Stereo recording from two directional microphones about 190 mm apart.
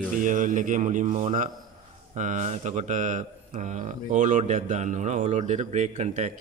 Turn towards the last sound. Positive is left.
turn(degrees=-35)  # may be behind; listen again after turning